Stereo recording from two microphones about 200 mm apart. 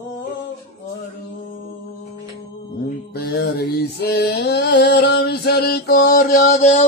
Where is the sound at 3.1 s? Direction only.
50° left (ahead or behind); by 6.8 s 35° left (ahead or behind).